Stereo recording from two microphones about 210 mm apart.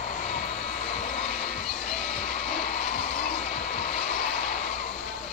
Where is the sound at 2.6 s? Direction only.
30° left (ahead or behind).